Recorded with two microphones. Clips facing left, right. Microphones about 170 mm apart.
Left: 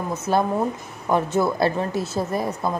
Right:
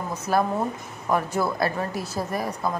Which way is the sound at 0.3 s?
25° left (ahead or behind).